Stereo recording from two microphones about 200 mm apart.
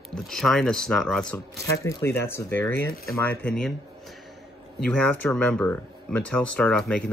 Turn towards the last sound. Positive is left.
turn(degrees=5)  # may be behind; listen again after turning